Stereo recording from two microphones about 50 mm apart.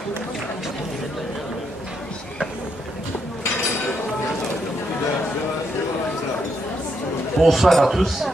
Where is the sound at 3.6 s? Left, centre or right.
Left.